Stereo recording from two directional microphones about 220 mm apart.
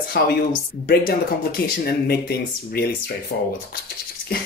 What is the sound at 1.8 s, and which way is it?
Speech, 45° left (ahead or behind).